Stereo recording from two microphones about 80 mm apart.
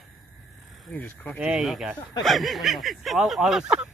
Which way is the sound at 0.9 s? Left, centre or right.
Centre.